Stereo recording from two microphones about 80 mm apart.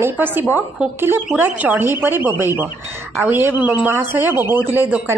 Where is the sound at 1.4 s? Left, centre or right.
Right.